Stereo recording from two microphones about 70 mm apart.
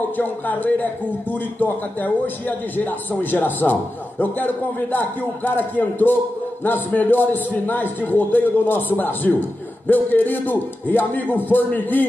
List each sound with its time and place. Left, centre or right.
0.2 s a man's voice: left